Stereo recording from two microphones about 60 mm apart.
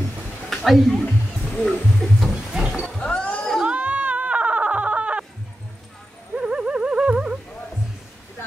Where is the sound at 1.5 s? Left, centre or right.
Centre.